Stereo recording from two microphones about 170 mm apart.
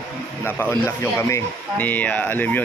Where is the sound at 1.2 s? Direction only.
15° left (ahead or behind).